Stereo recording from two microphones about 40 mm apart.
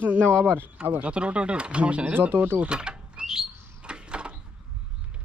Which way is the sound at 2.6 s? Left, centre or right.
Right.